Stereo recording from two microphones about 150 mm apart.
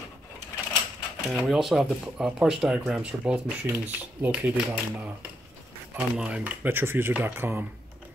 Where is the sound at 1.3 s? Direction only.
Centre (ahead or behind).